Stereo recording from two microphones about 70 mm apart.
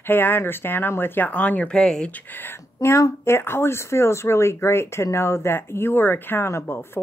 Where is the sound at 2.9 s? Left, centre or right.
Left.